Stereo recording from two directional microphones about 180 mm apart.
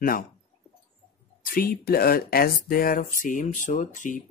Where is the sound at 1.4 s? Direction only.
55° left (ahead or behind).